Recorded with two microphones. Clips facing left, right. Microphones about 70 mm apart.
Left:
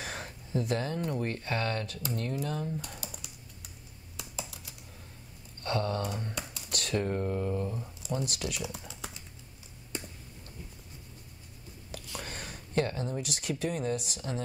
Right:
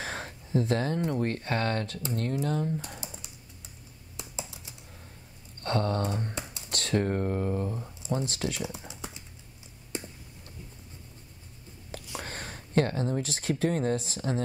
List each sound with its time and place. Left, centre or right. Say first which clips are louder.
0.0 s a sound: right 3 dB; right
1.2 s speech: right 3 dB; right
2.3 s speech: right 4 dB; right
2.8 s typing: right 1 dB; right
4.2 s computer keyboard: right 1 dB; right
5.6 s a sound: right 3 dB; right
6.0 s speech: right 3 dB; right
6.4 s computer keyboard: right 1 dB; right
6.7 s speech: right 3 dB; right
12.2 s speech: right 3 dB; right